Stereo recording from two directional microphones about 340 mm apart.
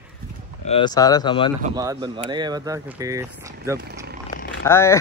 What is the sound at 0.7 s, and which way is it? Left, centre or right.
Speech, centre.